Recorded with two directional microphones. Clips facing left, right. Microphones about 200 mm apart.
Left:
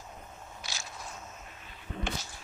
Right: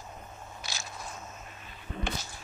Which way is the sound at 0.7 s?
35° right (ahead or behind).